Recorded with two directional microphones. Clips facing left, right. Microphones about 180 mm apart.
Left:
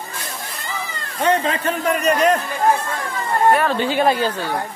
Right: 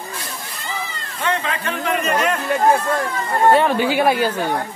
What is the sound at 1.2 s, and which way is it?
A man's voice, 40° left (ahead or behind).